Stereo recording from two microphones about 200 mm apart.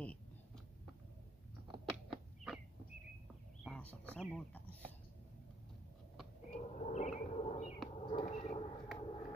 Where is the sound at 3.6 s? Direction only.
5° left (ahead or behind).